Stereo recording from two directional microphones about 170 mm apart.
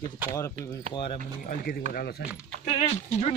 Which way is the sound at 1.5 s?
55° left (ahead or behind).